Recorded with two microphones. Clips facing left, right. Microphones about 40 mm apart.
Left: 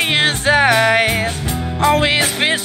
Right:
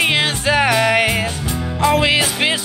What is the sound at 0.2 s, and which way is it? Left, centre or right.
Music, left.